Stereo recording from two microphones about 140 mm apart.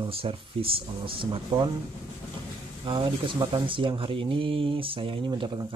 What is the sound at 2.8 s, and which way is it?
Speech, 35° right (ahead or behind).